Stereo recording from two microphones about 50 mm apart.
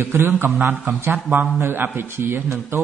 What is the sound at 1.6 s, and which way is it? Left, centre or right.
Speech, right.